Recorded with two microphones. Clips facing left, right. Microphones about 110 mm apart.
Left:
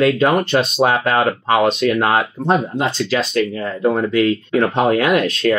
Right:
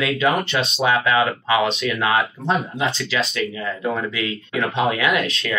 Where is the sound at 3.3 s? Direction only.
40° left (ahead or behind).